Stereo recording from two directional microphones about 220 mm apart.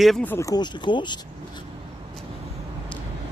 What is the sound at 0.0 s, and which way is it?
Speech, 5° left (ahead or behind).